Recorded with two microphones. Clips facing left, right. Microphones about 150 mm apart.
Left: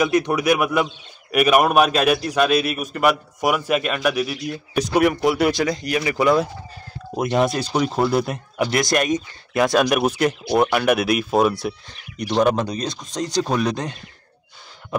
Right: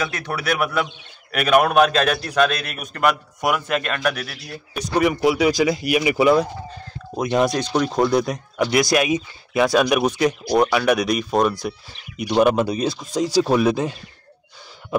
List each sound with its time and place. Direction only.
0.0 s a man's voice: 15° left (ahead or behind); by 13.9 s 5° right (ahead or behind)